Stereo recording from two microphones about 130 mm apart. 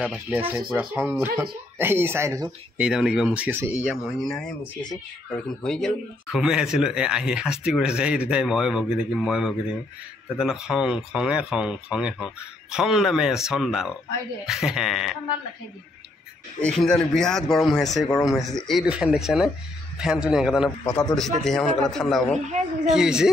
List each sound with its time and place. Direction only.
0.0 s speech: 10° right (ahead or behind)
2.8 s speech: 5° right (ahead or behind)
3.8 s speech: centre (ahead or behind)
5.6 s speech: 5° left (ahead or behind)
16.6 s speech: 5° left (ahead or behind)